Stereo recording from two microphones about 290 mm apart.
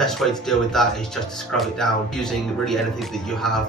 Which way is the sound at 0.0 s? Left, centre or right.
Centre.